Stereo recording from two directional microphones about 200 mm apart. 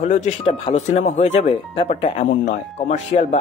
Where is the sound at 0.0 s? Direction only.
35° left (ahead or behind).